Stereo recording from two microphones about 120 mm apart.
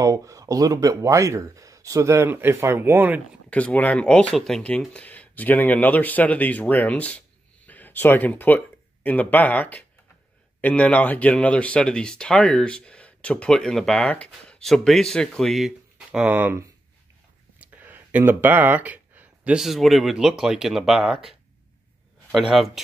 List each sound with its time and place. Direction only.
0.0 s speech: 30° right (ahead or behind)
3.4 s speech: 10° left (ahead or behind); by 16.5 s 15° right (ahead or behind)
17.6 s a man's voice: 15° right (ahead or behind)